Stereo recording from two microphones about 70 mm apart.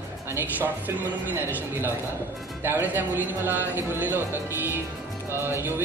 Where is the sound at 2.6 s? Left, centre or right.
Right.